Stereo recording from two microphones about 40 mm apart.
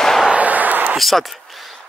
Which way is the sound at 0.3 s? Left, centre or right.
Right.